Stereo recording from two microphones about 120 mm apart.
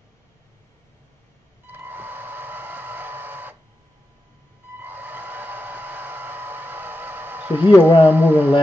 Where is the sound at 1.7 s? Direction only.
15° right (ahead or behind).